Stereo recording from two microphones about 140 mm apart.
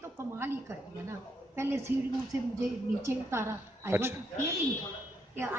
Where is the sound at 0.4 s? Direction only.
15° right (ahead or behind).